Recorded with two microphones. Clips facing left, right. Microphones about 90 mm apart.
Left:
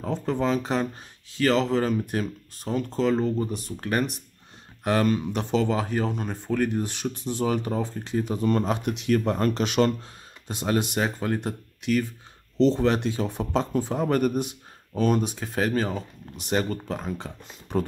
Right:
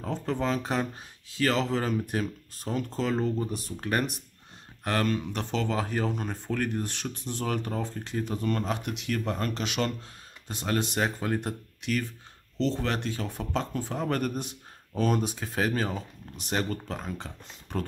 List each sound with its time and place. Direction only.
0.0 s speech: 5° left (ahead or behind)
4.8 s speech: 10° left (ahead or behind)
8.4 s speech: 25° left (ahead or behind); by 9.9 s 40° left (ahead or behind)
10.5 s speech: 15° left (ahead or behind)
12.5 s speech: 20° left (ahead or behind)
14.0 s speech: 10° left (ahead or behind)